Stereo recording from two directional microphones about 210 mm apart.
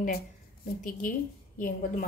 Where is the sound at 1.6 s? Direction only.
40° left (ahead or behind).